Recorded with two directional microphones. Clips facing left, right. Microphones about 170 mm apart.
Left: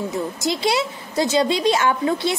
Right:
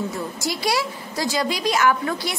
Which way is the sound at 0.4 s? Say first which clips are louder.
Left 2 dB; 20° left (ahead or behind).